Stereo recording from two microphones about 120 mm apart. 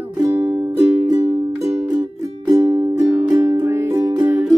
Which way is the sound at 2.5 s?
30° right (ahead or behind).